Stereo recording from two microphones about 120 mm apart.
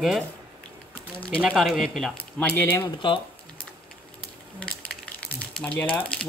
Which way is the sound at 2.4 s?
15° left (ahead or behind).